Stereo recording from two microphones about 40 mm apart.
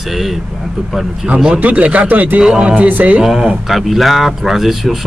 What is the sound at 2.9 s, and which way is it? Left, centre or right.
Speech, right.